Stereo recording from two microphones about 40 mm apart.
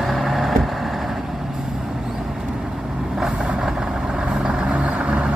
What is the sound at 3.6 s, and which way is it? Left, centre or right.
Vehicle, centre.